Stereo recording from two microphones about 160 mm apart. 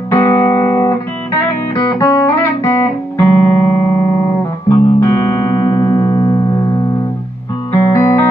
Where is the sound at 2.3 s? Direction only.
15° left (ahead or behind).